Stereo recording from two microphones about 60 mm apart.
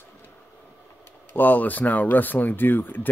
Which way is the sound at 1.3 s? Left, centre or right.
Left.